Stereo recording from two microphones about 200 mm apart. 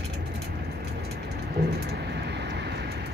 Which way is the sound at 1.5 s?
50° right (ahead or behind).